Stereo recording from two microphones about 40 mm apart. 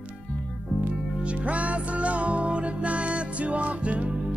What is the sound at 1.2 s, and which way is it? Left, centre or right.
Music, right.